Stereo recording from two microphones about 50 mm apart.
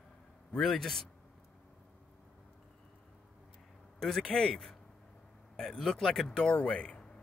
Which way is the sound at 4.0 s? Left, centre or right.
Centre.